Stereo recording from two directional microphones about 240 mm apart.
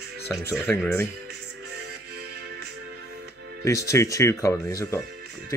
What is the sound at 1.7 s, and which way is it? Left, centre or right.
Music, right.